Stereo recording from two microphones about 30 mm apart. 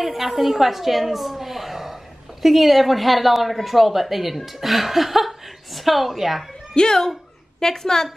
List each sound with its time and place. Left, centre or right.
0.0 s a woman's voice: centre
6.7 s a woman's voice: left